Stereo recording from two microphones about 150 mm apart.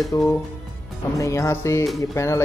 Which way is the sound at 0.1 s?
20° left (ahead or behind).